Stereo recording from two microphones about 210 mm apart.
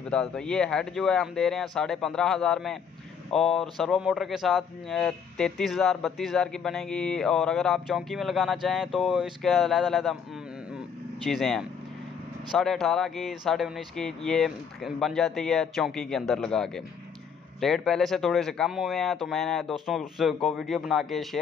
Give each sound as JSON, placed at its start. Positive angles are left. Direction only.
{"t": 0.1, "sound": "speech", "side_deg": 5}
{"t": 11.2, "sound": "speech", "side_deg": 0}